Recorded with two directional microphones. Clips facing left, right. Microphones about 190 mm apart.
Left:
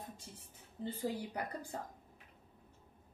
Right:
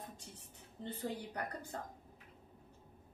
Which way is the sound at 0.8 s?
10° left (ahead or behind).